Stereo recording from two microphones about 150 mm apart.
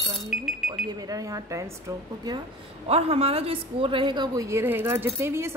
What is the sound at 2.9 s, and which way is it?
A woman's voice, 45° right (ahead or behind).